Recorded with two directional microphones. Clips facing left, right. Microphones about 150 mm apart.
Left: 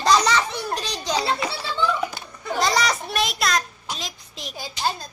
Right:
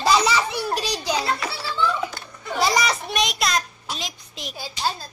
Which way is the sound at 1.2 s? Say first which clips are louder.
Left 1 dB; 25° left (ahead or behind).